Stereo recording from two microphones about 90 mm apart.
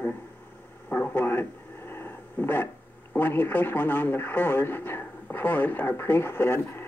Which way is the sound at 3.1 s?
20° left (ahead or behind).